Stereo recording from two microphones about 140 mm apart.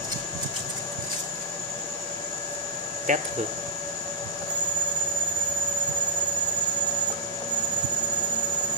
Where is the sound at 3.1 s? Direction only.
60° right (ahead or behind).